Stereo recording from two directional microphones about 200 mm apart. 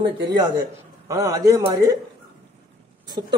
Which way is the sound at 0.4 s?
20° right (ahead or behind).